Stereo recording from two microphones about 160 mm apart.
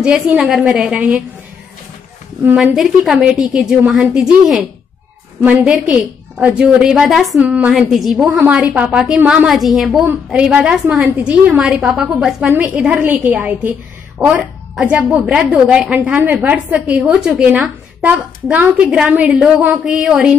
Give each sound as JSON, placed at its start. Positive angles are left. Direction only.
{"t": 0.0, "sound": "a woman's voice", "side_deg": -5}
{"t": 2.4, "sound": "a woman's voice", "side_deg": -5}